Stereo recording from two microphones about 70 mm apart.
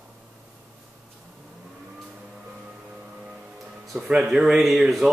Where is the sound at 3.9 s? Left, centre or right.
Centre.